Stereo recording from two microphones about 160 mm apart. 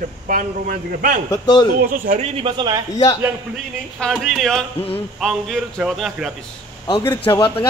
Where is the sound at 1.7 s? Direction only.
60° right (ahead or behind).